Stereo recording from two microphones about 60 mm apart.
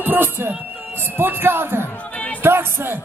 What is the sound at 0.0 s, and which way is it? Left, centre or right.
A man's voice, right.